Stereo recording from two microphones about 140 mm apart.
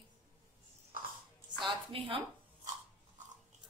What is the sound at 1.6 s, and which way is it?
Speech, 35° right (ahead or behind).